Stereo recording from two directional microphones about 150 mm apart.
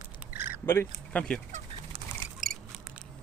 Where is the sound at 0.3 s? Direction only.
15° right (ahead or behind).